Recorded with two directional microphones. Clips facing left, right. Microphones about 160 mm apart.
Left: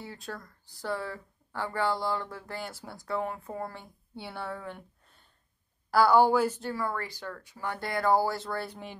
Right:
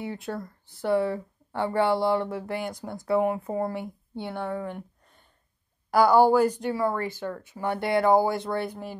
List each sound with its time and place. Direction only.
0.0 s a woman's voice: 20° right (ahead or behind)
6.7 s speech: 25° right (ahead or behind)